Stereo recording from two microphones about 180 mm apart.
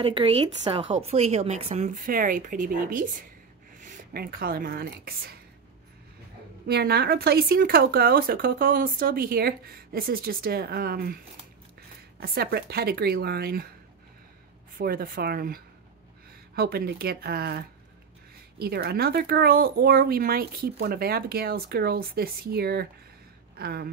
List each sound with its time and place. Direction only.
0.0 s a woman's voice: 30° right (ahead or behind)
2.0 s a woman's voice: 50° right (ahead or behind)
6.7 s speech: 65° right (ahead or behind)
12.2 s speech: 55° right (ahead or behind)
14.8 s speech: 55° right (ahead or behind)